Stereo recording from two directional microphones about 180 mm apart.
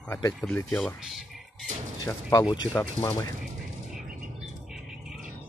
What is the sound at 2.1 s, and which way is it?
Speech, 15° left (ahead or behind).